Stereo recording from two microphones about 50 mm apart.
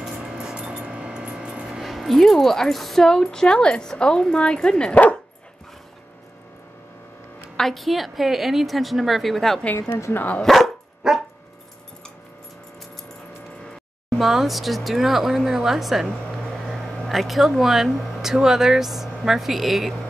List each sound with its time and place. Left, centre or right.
0.2 s vehicle: centre
1.7 s speech: centre
7.5 s speech: centre
11.0 s dog: centre
14.1 s speech: centre
16.7 s a sound: centre
17.5 s speech: centre